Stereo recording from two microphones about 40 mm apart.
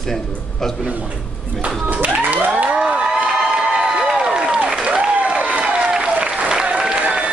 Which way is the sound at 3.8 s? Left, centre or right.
Centre.